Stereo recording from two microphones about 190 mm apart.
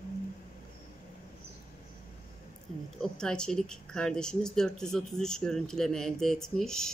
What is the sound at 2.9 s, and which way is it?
Speech, 5° left (ahead or behind).